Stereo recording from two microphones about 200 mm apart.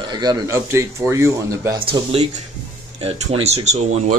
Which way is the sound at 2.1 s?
35° right (ahead or behind).